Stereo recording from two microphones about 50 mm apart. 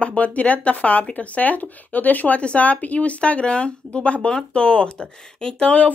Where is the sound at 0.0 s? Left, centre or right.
Left.